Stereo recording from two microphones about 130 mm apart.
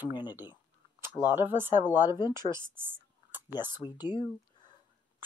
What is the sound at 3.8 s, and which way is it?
Speech, 35° left (ahead or behind).